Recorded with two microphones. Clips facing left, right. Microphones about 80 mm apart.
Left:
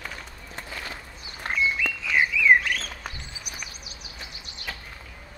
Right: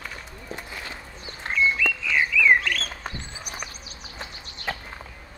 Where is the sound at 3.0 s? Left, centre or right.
Right.